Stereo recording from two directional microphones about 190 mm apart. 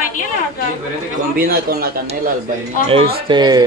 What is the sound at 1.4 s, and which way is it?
Speech, 50° right (ahead or behind).